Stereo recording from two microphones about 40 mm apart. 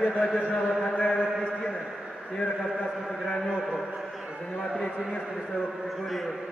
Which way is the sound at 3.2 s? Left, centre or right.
Centre.